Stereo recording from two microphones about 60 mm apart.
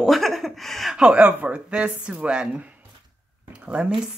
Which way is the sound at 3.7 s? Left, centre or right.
Centre.